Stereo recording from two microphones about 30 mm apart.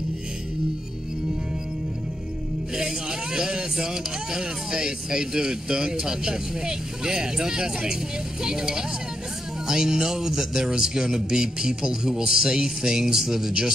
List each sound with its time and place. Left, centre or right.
2.7 s speech: right